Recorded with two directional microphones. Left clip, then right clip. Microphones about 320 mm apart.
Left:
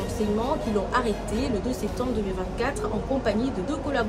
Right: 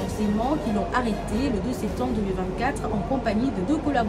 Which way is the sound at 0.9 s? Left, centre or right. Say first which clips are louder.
Even; centre.